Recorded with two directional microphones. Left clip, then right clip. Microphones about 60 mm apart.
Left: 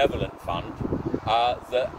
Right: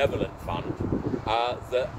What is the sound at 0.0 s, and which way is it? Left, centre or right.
Speech, right.